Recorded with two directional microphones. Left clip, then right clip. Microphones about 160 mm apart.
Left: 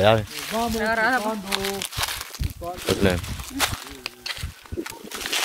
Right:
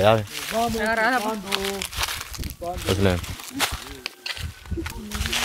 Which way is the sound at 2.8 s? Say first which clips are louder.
Left 1 dB; 15° left (ahead or behind).